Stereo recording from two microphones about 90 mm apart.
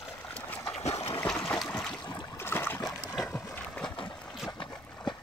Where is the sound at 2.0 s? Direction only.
55° left (ahead or behind).